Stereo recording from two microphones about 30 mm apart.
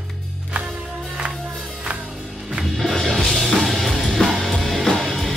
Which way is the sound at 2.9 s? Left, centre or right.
Centre.